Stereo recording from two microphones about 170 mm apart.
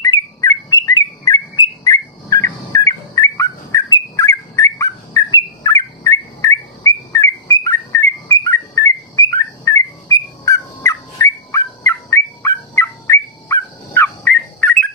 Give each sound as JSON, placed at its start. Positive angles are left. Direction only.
{"t": 0.0, "sound": "bird", "side_deg": 20}